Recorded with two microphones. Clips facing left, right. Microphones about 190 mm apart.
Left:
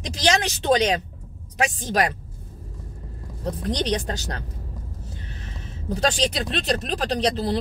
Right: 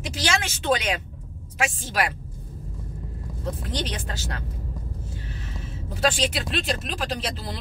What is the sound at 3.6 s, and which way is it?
Speech, 35° left (ahead or behind).